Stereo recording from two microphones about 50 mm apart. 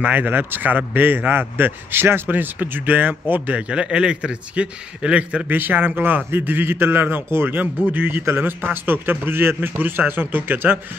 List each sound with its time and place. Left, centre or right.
0.0 s a man's voice: right; by 5.5 s centre
5.5 s a man's voice: right